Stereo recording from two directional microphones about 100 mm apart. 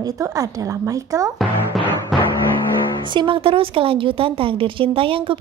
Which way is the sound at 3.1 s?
55° right (ahead or behind).